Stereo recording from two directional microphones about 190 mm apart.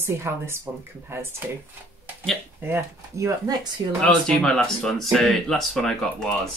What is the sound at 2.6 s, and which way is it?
Speech, 15° right (ahead or behind).